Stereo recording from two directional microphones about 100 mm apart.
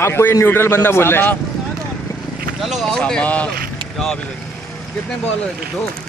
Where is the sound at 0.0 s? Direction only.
25° left (ahead or behind).